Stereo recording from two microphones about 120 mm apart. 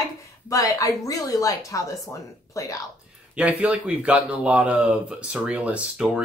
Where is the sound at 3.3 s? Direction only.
10° right (ahead or behind).